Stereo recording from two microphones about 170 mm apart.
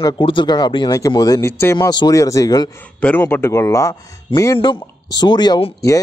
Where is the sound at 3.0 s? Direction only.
10° left (ahead or behind).